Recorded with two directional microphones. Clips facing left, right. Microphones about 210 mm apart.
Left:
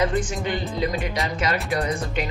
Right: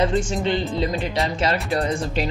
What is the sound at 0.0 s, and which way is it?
Speech, 25° right (ahead or behind).